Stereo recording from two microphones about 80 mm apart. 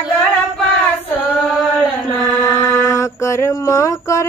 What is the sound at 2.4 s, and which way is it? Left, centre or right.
Mantra, left.